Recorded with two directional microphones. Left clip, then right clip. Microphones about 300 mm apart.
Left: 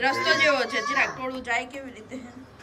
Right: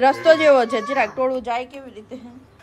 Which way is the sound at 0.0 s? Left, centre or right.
Centre.